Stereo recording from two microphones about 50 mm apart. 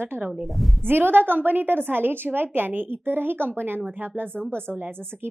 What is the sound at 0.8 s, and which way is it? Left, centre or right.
A woman's voice, right.